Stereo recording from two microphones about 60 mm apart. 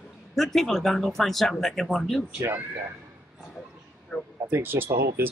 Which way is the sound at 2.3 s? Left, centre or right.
Right.